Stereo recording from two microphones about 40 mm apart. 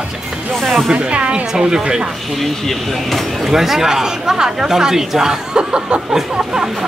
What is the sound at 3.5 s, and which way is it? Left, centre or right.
Speech, centre.